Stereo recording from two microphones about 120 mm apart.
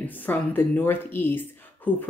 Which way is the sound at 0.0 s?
15° left (ahead or behind).